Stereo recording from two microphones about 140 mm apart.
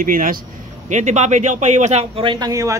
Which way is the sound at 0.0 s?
85° right.